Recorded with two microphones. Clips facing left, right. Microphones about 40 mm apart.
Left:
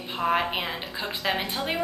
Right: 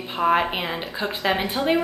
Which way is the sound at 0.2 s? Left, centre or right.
Centre.